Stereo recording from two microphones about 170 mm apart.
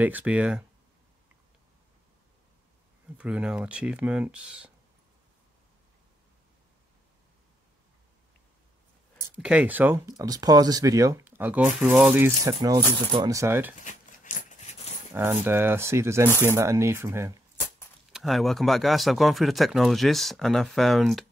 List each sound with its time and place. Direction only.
0.0 s speech: 10° right (ahead or behind)
3.2 s speech: 5° right (ahead or behind)
9.4 s speech: 5° right (ahead or behind)
12.4 s speech: 20° right (ahead or behind)
13.8 s a sound: 50° left (ahead or behind)
15.1 s speech: 15° right (ahead or behind)
18.1 s speech: centre (ahead or behind)